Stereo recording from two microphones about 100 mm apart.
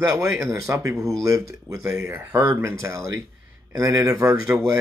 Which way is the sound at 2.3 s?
20° right (ahead or behind).